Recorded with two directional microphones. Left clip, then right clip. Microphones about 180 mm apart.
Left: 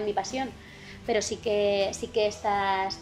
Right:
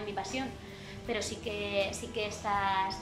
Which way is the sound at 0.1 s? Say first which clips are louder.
Left 6 dB; 35° left (ahead or behind).